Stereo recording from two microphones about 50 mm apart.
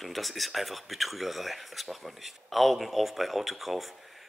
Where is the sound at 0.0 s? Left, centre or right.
Centre.